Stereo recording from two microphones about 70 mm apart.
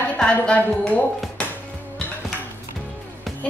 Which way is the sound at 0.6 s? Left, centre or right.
Left.